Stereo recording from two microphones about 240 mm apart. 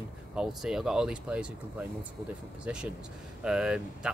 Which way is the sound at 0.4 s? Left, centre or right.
Centre.